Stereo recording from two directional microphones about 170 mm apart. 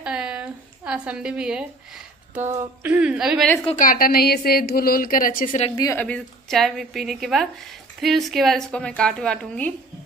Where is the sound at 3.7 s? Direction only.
55° left (ahead or behind).